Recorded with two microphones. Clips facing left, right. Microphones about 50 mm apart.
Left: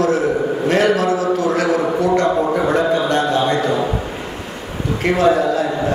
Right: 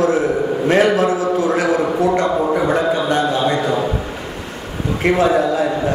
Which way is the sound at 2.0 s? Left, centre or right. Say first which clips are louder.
Left 2 dB; centre.